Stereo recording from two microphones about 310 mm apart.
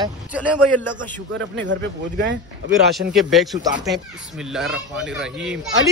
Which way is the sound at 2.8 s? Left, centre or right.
Centre.